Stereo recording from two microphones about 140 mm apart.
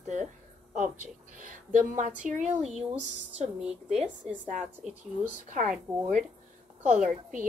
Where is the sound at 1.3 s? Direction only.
65° right (ahead or behind).